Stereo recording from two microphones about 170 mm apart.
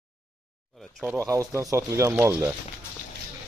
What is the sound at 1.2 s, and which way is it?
Speech, 15° right (ahead or behind).